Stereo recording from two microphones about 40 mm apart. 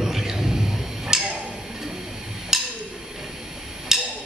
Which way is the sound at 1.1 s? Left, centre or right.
Centre.